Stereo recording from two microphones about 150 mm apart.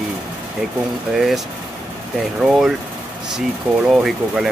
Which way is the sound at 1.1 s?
Centre (ahead or behind).